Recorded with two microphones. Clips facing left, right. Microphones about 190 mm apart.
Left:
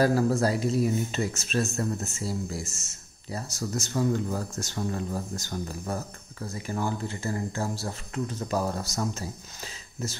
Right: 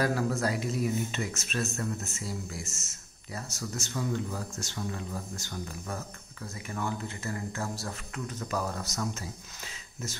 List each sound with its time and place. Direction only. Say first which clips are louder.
0.0 s speech: left 6 dB; 35° left (ahead or behind)